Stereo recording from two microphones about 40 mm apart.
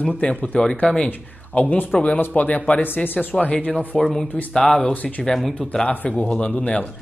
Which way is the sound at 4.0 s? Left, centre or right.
Centre.